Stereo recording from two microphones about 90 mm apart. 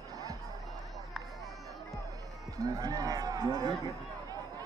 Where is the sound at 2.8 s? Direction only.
45° right (ahead or behind).